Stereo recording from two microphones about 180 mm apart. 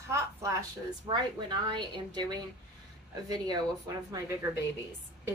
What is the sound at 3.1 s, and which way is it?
Speech, 20° right (ahead or behind).